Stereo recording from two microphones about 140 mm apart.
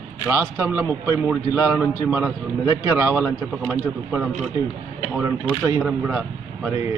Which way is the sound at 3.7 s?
5° right (ahead or behind).